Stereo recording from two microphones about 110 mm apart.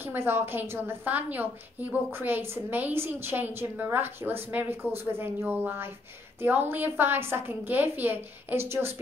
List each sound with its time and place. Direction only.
0.0 s a woman's voice: 20° right (ahead or behind)